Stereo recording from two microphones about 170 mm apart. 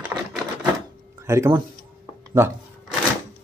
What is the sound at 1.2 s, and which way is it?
Speech, 15° right (ahead or behind).